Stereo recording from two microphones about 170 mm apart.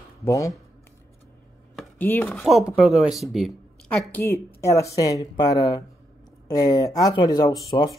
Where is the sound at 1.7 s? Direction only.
10° left (ahead or behind).